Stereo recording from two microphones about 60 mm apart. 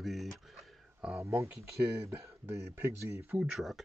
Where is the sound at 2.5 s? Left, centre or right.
Right.